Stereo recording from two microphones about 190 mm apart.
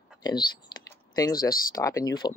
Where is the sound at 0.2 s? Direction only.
20° left (ahead or behind).